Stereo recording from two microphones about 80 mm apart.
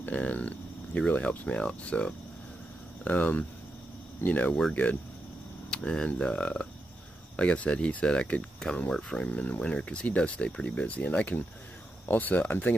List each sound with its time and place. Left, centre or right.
0.0 s speech: centre